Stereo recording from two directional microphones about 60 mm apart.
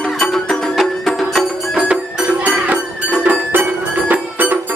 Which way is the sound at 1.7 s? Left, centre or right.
Centre.